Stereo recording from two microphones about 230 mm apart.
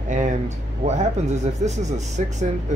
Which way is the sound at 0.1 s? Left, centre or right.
Right.